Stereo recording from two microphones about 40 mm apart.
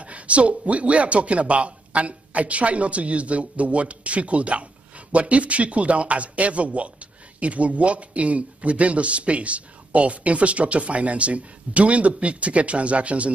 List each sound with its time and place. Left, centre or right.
0.0 s speech: right